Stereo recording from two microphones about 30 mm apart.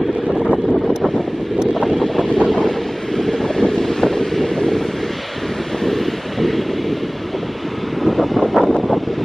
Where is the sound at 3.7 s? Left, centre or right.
Centre.